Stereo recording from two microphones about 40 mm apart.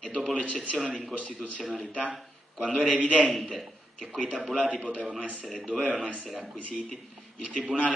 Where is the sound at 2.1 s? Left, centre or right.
Centre.